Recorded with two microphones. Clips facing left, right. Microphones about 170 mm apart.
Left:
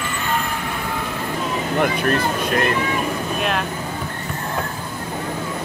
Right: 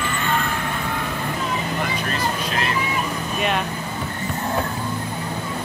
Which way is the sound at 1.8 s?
55° left (ahead or behind).